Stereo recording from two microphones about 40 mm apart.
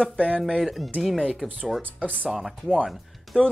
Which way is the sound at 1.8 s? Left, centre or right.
Right.